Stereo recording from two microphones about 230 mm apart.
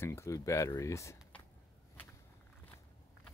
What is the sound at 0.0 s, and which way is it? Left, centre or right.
Speech, centre.